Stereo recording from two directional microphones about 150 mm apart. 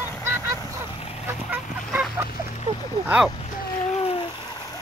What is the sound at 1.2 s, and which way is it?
Goose, 15° right (ahead or behind).